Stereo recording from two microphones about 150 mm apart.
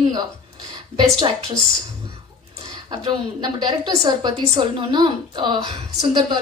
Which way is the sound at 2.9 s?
30° right (ahead or behind).